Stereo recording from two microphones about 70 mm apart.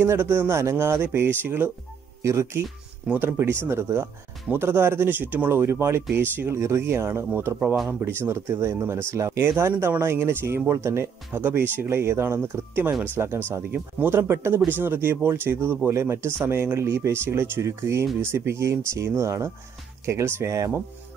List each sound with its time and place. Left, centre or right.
0.0 s speech: right
2.2 s speech: right
3.2 s speech: right